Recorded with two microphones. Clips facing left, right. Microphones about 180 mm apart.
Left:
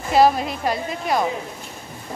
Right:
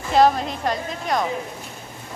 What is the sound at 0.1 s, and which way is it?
A woman's voice, 5° left (ahead or behind).